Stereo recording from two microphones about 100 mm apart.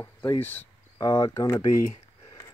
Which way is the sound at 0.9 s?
40° left (ahead or behind).